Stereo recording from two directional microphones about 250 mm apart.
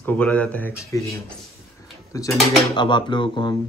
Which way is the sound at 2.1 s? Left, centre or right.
Centre.